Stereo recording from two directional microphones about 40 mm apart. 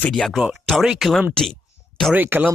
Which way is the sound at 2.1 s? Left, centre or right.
Right.